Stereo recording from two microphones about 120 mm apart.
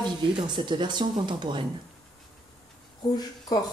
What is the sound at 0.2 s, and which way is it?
Speech, 40° right (ahead or behind).